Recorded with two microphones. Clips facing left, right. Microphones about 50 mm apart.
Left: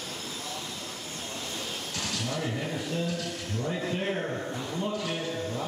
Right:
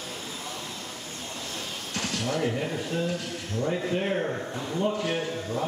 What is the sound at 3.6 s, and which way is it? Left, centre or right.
A man's voice, centre.